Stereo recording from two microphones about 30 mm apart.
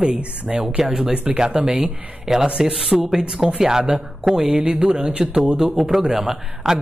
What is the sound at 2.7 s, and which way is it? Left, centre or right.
Speech, centre.